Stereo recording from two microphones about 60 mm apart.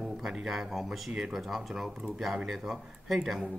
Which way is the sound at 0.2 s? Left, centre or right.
Centre.